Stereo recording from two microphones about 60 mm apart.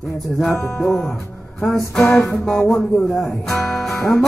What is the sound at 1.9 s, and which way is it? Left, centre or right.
Speech, centre.